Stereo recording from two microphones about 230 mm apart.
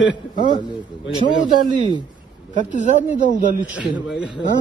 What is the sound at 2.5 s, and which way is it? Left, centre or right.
Speech, right.